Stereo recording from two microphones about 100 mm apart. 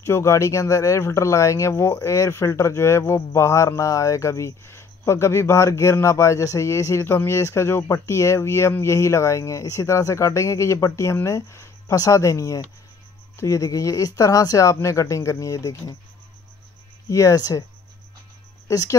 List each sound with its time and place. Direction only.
0.0 s speech: 30° left (ahead or behind)
17.1 s speech: 35° left (ahead or behind)
18.7 s speech: 35° left (ahead or behind)